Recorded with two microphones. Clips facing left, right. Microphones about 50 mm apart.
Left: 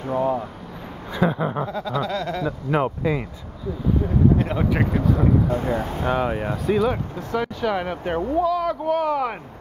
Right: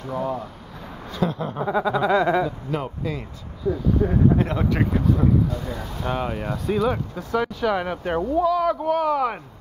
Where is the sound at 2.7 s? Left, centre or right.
Left.